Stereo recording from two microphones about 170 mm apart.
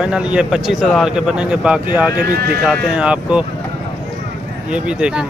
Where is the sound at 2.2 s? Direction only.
65° right (ahead or behind).